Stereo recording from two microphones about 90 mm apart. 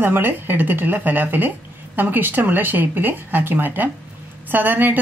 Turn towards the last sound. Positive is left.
turn(degrees=-20)  # may be behind; listen again after turning